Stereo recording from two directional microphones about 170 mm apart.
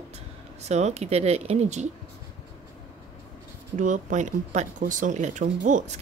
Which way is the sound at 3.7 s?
45° right (ahead or behind).